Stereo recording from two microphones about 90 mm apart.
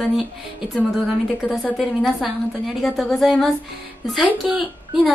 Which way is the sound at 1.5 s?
Centre (ahead or behind).